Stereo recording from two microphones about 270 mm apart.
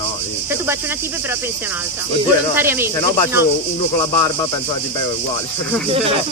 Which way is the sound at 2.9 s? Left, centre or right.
Centre.